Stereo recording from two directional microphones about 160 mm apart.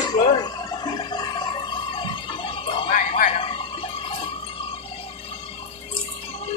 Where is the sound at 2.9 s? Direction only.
55° left (ahead or behind).